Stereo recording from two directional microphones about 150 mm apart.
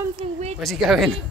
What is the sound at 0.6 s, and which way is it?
Speech, centre (ahead or behind).